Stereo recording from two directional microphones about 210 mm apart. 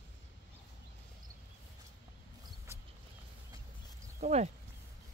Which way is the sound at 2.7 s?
10° right (ahead or behind).